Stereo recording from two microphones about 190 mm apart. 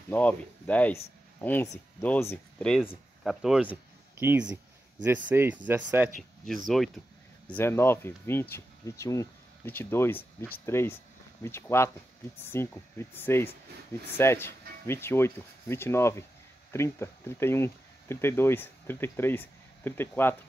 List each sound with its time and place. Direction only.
0.1 s speech: 10° left (ahead or behind)
7.4 s speech: 10° left (ahead or behind)